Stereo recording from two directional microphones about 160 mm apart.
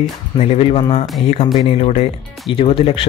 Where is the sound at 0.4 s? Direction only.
40° left (ahead or behind).